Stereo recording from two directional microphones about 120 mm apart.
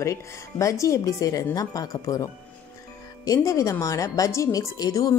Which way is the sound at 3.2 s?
25° left (ahead or behind).